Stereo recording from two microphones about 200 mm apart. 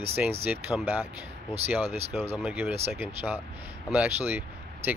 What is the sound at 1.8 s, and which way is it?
Speech, 30° right (ahead or behind).